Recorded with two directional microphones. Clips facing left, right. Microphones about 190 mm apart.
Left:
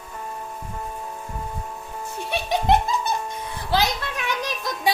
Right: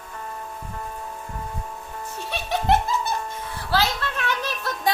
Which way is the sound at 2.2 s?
15° left (ahead or behind).